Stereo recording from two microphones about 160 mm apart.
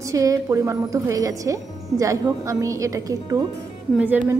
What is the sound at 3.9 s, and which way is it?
Speech, 10° right (ahead or behind).